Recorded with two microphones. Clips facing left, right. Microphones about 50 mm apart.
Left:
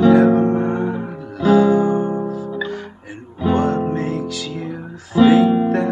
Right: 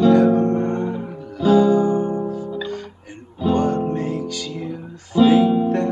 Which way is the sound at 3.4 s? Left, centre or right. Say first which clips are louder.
Left 1 dB; centre.